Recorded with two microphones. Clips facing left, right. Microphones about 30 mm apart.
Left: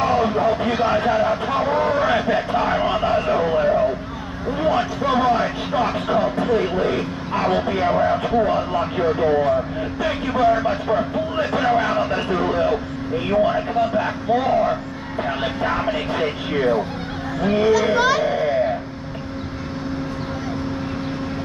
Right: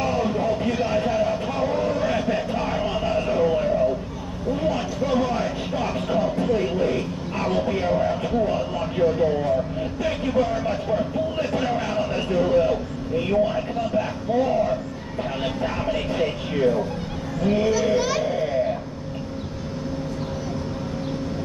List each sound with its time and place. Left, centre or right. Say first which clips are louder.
0.0 s vehicle: left 5 dB; left
5.0 s speech: left 3 dB; left
9.0 s speech: left 2 dB; left
17.4 s speech: left 2 dB; left
17.6 s a child's voice: left 4 dB; left